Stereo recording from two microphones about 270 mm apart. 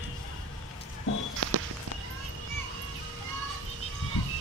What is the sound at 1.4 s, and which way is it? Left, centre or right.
Walk, right.